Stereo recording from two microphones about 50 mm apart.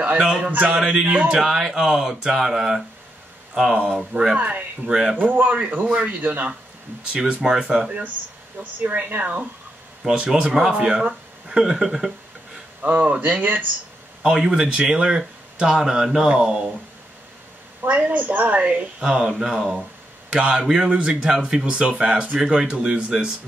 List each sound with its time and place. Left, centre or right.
0.2 s speech: centre
1.4 s speech: centre
4.1 s speech: centre
4.4 s a woman's voice: right
8.5 s a woman's voice: right
10.4 s speech: centre
12.8 s a woman's voice: right
14.2 s speech: centre
17.8 s a woman's voice: right
19.0 s a man's voice: centre
21.6 s speech: right